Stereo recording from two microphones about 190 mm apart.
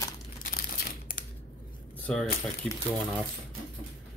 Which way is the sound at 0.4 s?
50° left (ahead or behind).